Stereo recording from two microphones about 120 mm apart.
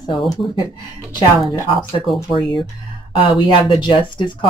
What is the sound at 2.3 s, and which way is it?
Speech, 45° left (ahead or behind).